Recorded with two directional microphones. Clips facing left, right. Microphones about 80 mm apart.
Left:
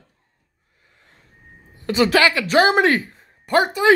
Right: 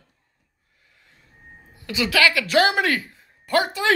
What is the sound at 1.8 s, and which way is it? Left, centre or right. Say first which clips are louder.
Speech: left 4 dB; left.